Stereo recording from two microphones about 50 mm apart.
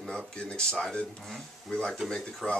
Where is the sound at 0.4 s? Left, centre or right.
Centre.